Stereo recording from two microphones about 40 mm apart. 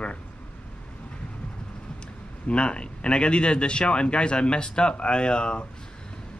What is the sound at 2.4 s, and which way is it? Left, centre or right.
A man's voice, left.